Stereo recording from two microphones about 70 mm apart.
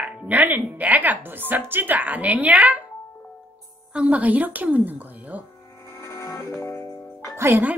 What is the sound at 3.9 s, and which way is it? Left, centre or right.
Speech, centre.